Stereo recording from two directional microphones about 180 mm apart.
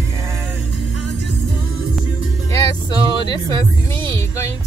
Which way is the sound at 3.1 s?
20° left (ahead or behind).